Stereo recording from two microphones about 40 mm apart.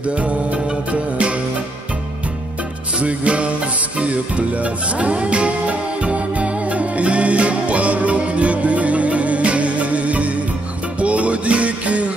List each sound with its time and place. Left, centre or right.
3.0 s music: right